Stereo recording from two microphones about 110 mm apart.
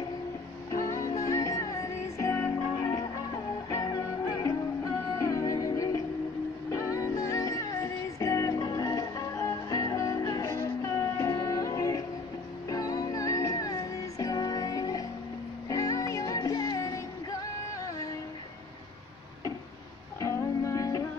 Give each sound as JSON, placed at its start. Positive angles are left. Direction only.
{"t": 0.7, "sound": "music", "side_deg": 30}
{"t": 3.8, "sound": "music", "side_deg": 35}
{"t": 6.9, "sound": "music", "side_deg": 30}
{"t": 20.2, "sound": "music", "side_deg": 30}